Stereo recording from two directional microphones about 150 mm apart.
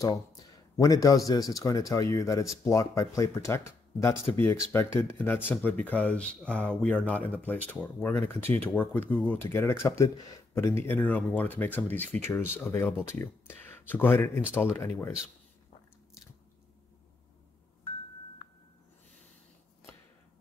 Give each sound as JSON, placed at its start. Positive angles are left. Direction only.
{"t": 0.4, "sound": "a man's voice", "side_deg": 25}